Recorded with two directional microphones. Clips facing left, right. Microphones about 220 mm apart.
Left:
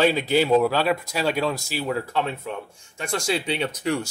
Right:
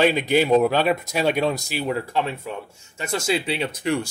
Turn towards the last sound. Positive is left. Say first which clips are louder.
# right 1 dB
turn(degrees=-10)  # may be behind; listen again after turning